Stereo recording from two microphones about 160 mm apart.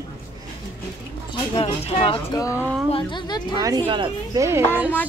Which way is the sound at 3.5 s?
25° right (ahead or behind).